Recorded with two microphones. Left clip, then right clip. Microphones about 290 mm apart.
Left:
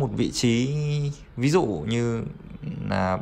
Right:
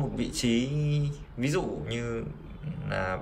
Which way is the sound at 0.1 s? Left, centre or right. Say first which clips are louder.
Left 5 dB; centre.